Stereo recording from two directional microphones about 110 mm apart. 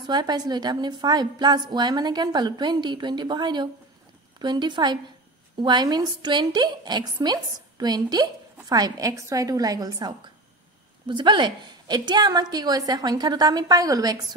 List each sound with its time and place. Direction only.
0.0 s a woman's voice: 40° right (ahead or behind)